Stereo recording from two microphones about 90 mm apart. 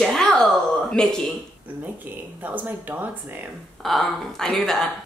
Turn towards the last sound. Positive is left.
turn(degrees=5)  # may be behind; listen again after turning